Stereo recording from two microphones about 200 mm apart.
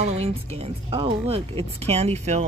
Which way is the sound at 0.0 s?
30° right (ahead or behind).